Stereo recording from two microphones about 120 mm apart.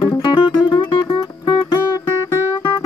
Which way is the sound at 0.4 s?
45° left (ahead or behind).